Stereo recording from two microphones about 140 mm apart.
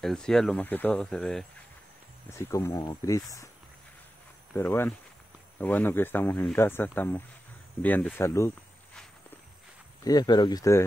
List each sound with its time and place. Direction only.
0.0 s speech: 5° left (ahead or behind)
2.3 s speech: 20° left (ahead or behind)
4.6 s speech: 15° left (ahead or behind)
10.0 s speech: 30° left (ahead or behind)